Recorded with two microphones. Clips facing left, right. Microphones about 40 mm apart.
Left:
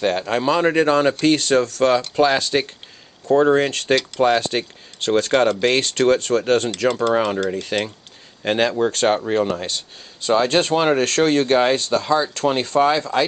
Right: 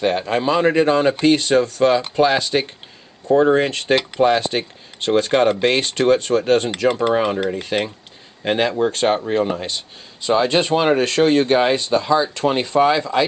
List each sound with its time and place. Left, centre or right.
0.2 s speech: right